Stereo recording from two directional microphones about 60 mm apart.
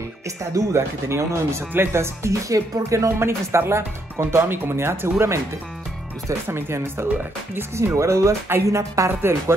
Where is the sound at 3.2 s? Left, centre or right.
Right.